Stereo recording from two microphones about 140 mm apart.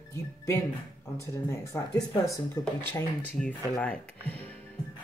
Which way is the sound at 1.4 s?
25° left (ahead or behind).